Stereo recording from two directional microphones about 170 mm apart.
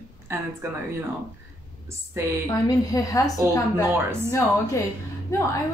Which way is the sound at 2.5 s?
20° left (ahead or behind).